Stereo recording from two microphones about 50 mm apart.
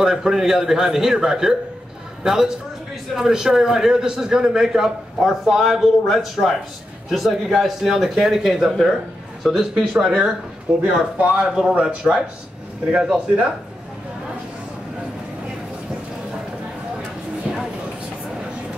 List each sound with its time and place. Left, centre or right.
0.0 s a man's voice: centre